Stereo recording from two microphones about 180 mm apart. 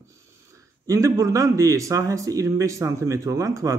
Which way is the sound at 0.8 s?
15° right (ahead or behind).